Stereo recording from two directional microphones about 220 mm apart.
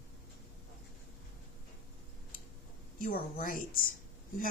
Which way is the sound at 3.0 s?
40° left (ahead or behind).